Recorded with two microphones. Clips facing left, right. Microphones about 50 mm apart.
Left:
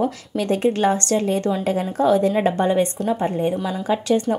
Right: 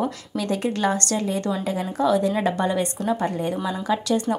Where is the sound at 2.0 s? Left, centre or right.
Left.